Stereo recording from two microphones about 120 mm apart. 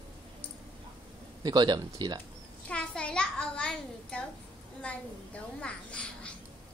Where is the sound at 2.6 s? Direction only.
10° left (ahead or behind).